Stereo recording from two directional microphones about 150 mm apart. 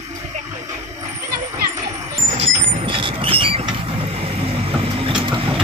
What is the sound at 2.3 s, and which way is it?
Vehicle, 50° right (ahead or behind).